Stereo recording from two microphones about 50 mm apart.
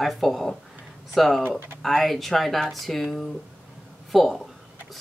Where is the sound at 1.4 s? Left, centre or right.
Right.